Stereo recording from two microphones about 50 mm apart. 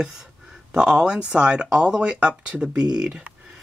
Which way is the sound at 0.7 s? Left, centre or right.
Right.